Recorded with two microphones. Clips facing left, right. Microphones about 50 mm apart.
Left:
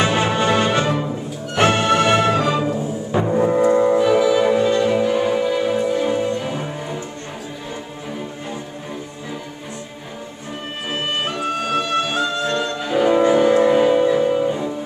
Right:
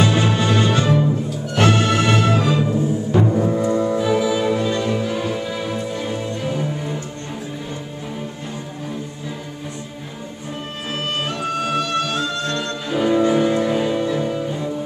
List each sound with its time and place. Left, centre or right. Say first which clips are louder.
0.0 s music: even; left
0.8 s music: right 3 dB; centre
3.3 s music: left 3 dB; left
4.2 s music: left 4 dB; centre
4.5 s music: left 4 dB; centre
10.9 s music: left 1 dB; centre